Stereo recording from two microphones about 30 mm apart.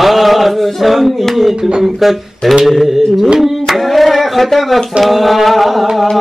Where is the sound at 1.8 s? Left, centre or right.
Centre.